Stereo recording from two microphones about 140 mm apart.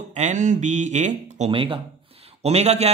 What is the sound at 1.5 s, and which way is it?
Speech, 40° right (ahead or behind).